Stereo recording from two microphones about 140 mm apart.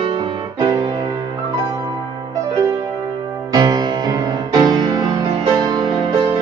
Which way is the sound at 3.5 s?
25° right (ahead or behind).